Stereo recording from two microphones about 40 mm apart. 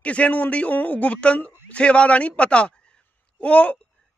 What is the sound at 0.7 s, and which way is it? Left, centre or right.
A woman's voice, left.